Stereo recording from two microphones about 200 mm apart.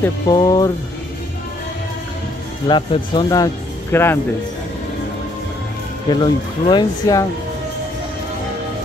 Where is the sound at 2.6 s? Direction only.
25° left (ahead or behind).